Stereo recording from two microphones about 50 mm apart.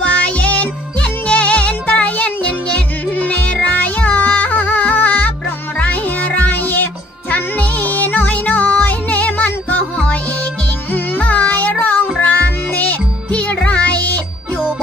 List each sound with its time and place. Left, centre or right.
0.0 s music: left